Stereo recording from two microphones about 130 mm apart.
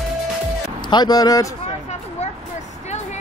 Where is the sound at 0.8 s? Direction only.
35° left (ahead or behind).